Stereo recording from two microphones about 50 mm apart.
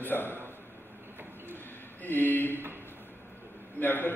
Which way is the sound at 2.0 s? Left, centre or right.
Left.